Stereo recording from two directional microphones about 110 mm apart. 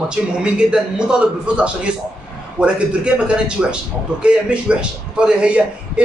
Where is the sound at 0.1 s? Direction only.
10° right (ahead or behind).